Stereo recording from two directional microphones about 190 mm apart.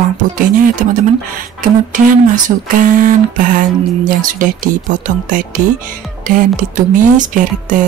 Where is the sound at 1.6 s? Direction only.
45° right (ahead or behind).